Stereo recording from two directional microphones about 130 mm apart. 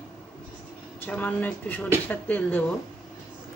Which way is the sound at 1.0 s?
15° left (ahead or behind).